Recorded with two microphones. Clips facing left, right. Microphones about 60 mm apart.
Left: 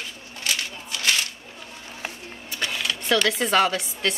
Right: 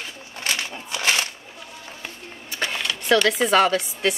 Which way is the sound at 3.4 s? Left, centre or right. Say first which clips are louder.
Right 3 dB; centre.